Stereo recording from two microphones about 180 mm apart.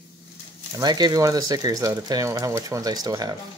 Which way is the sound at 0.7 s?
25° right (ahead or behind).